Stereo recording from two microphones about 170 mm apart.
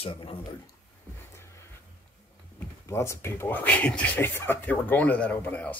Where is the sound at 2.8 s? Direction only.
15° left (ahead or behind).